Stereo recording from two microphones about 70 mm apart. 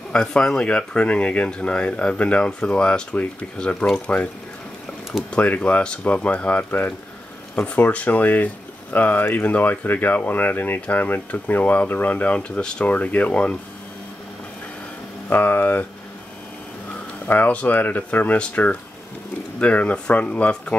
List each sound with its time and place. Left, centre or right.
0.1 s speech: centre
5.3 s speech: centre
15.2 s speech: left
17.3 s speech: left